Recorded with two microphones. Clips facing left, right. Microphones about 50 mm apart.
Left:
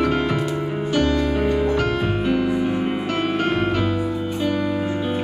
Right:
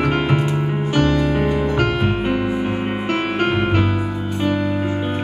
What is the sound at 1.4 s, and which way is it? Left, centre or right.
Music, right.